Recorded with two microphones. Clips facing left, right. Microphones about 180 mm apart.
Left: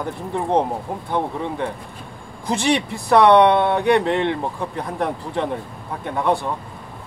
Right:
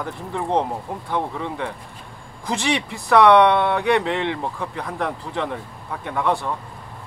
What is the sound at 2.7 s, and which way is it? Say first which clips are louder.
Speech: left 2 dB; 35° left (ahead or behind).